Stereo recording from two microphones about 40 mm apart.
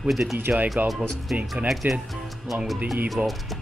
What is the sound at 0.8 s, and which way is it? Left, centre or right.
Speech, right.